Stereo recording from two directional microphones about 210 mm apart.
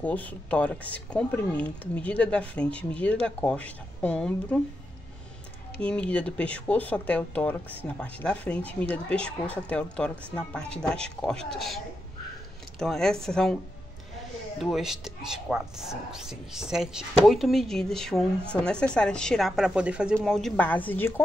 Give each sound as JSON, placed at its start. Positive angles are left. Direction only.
{"t": 0.0, "sound": "speech", "side_deg": 5}
{"t": 5.8, "sound": "speech", "side_deg": 5}
{"t": 14.6, "sound": "speech", "side_deg": 0}